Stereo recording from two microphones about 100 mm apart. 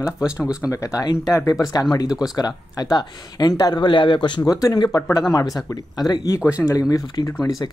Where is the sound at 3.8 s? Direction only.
55° left (ahead or behind).